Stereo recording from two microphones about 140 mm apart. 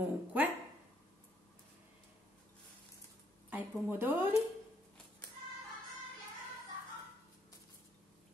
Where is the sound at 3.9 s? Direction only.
15° right (ahead or behind).